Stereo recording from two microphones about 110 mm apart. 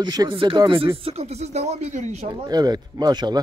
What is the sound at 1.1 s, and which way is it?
Speech, 75° right (ahead or behind).